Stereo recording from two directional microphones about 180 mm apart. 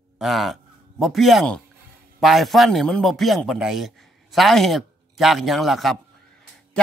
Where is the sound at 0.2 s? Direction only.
Centre (ahead or behind).